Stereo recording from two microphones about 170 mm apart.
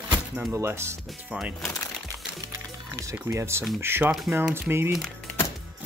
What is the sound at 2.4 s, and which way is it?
Music, 20° right (ahead or behind).